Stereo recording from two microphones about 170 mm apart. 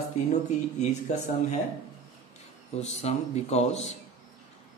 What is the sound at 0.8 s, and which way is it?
Speech, 45° left (ahead or behind).